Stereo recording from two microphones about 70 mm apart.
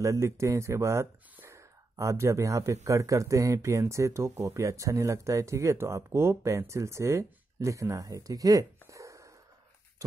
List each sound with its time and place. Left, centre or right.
0.0 s speech: right